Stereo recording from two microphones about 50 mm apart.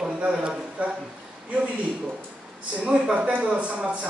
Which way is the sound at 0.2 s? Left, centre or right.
Right.